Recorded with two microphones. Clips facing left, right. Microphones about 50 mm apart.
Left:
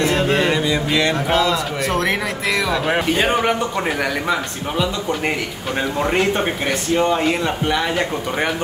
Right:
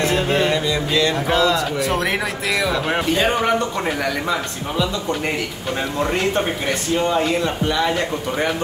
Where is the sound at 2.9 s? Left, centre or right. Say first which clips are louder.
Left 2 dB; centre.